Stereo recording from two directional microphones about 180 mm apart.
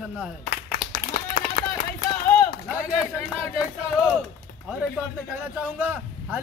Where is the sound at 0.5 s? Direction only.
50° left (ahead or behind).